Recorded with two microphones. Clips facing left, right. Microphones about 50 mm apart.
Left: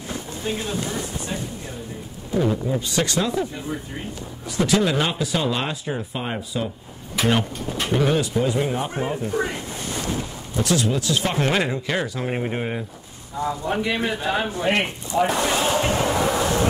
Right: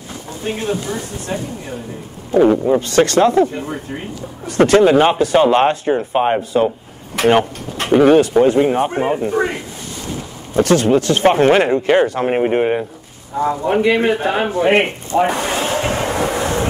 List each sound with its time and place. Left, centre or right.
0.5 s speech: right
2.3 s speech: right
7.2 s speech: right
8.5 s speech: right
10.5 s speech: right
14.7 s a sound: right